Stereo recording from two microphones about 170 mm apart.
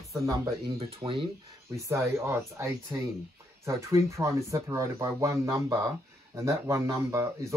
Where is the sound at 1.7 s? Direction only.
15° right (ahead or behind).